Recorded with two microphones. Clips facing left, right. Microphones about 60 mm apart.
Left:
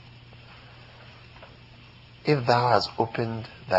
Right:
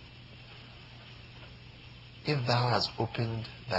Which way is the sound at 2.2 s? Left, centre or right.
Left.